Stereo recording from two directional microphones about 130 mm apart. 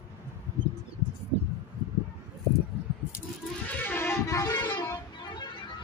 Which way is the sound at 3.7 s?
15° left (ahead or behind).